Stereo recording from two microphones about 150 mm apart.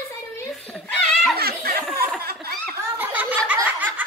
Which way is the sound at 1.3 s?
90° right.